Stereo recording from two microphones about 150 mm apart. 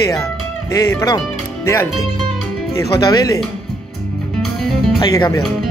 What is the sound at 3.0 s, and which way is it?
Speech, 25° left (ahead or behind).